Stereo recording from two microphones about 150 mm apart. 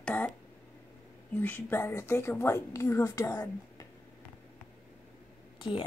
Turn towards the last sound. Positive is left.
turn(degrees=35)  # may be behind; listen again after turning